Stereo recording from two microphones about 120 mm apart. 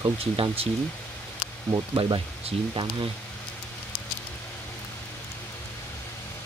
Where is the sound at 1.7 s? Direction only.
40° right (ahead or behind).